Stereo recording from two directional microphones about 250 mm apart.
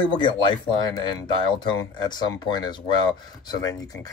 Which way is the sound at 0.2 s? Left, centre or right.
Centre.